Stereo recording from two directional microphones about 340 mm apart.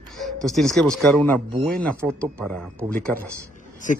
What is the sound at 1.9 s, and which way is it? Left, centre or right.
Speech, centre.